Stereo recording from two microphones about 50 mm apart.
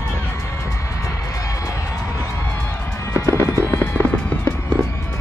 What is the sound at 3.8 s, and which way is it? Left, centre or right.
Music, left.